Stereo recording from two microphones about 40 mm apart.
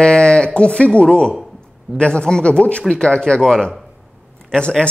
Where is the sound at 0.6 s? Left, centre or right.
Left.